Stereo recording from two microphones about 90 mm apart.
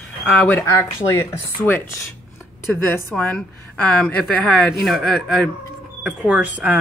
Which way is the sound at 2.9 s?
15° left (ahead or behind).